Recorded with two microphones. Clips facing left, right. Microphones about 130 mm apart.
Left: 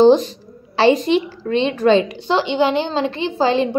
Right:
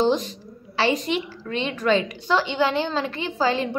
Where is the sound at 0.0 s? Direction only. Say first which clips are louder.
Left 10 dB; 30° left (ahead or behind).